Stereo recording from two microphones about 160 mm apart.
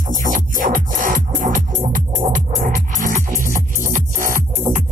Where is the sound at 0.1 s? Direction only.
55° right (ahead or behind).